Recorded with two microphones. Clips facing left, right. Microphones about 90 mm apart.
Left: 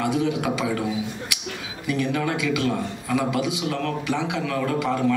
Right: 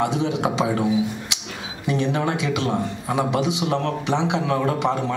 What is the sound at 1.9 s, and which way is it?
A man's voice, 25° right (ahead or behind).